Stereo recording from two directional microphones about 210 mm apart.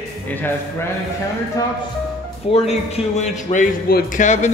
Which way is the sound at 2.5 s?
30° left (ahead or behind).